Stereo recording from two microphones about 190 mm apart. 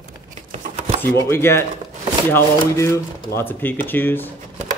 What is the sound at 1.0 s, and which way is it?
Speech, 15° left (ahead or behind).